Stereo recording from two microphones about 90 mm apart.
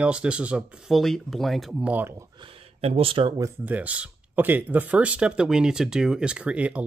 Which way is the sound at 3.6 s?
20° right (ahead or behind).